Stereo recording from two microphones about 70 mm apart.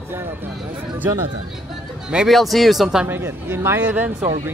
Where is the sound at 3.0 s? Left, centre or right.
Right.